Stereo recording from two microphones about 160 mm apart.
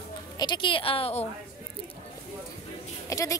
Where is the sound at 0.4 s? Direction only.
30° left (ahead or behind).